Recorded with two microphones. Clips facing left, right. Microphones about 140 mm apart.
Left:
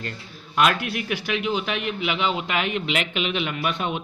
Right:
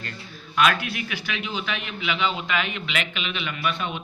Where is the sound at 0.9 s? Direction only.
55° left (ahead or behind).